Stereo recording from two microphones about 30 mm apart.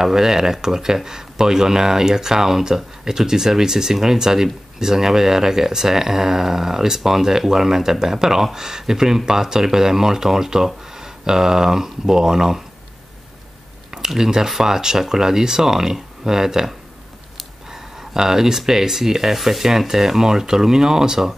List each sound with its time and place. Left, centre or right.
0.0 s speech: centre
13.9 s speech: centre
17.6 s a sound: centre
18.7 s speech: centre